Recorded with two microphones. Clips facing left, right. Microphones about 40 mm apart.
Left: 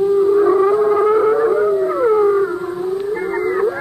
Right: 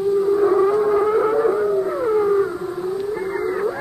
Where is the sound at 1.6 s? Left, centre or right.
Centre.